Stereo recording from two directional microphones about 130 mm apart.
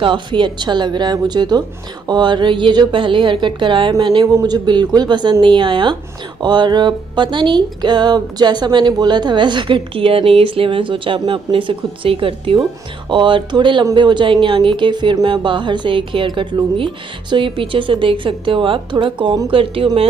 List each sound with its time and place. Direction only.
0.0 s speech: 40° right (ahead or behind)